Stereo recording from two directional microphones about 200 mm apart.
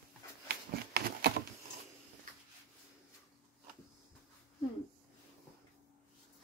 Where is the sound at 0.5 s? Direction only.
50° right (ahead or behind).